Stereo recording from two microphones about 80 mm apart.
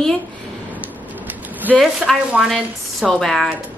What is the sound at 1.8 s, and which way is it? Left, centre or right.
A woman's voice, centre.